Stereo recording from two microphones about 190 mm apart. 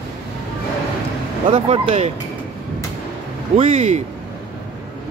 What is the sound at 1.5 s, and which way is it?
Speech, 30° right (ahead or behind).